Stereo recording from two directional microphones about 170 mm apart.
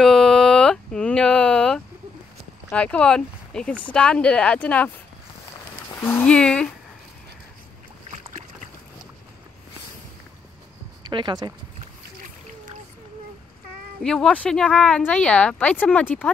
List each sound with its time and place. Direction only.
0.0 s a sound: 5° left (ahead or behind)
2.7 s speech: 5° left (ahead or behind)
5.9 s speech: 10° left (ahead or behind)
11.1 s speech: 25° right (ahead or behind)
14.0 s speech: 5° left (ahead or behind)